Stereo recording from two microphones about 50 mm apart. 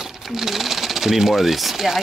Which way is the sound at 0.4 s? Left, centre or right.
Centre.